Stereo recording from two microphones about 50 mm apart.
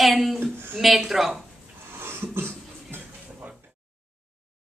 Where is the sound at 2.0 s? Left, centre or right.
Right.